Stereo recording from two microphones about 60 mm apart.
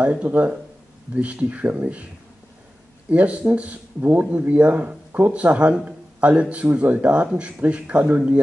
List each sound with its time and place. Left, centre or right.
0.0 s speech: right
3.1 s speech: right